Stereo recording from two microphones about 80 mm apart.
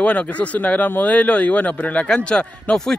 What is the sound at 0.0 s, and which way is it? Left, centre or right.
Speech, centre.